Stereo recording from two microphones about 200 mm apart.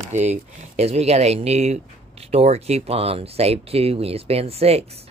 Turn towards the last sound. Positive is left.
turn(degrees=-30)  # may be behind; listen again after turning